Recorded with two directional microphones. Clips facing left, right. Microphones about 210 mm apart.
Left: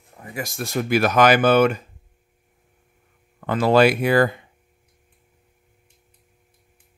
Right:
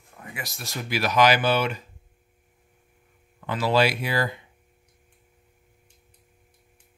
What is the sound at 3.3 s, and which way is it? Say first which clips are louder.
Speech: left 6 dB; 50° left (ahead or behind).